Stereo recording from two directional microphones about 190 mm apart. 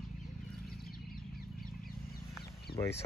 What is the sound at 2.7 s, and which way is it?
Speech, 15° left (ahead or behind).